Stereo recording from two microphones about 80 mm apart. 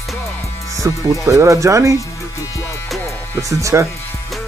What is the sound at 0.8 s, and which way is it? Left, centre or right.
Speech, right.